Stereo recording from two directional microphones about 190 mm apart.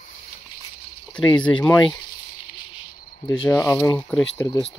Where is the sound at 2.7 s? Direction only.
25° left (ahead or behind).